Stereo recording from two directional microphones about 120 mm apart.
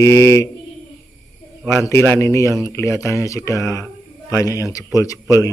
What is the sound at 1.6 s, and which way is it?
Speech, 20° left (ahead or behind).